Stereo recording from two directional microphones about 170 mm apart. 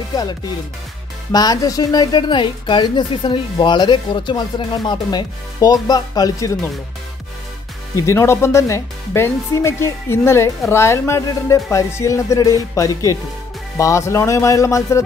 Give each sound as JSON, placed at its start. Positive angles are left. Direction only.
{"t": 0.1, "sound": "music", "side_deg": 25}
{"t": 1.3, "sound": "speech", "side_deg": 20}
{"t": 7.9, "sound": "speech", "side_deg": 15}